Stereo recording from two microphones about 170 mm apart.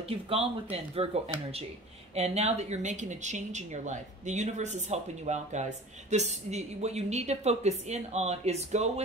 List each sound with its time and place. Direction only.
0.1 s speech: 35° right (ahead or behind)
2.1 s speech: 40° right (ahead or behind)